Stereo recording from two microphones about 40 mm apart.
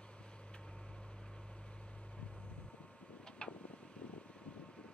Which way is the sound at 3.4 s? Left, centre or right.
Left.